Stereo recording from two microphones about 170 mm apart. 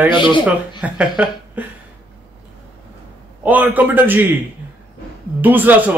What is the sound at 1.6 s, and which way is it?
Speech, 10° right (ahead or behind).